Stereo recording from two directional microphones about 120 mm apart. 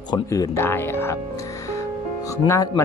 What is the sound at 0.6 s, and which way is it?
Speech, 20° left (ahead or behind).